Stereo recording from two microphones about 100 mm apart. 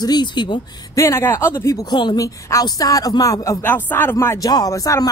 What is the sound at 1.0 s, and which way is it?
Speech, 30° left (ahead or behind).